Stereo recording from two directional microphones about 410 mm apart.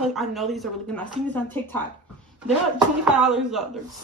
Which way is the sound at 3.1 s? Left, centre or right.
Centre.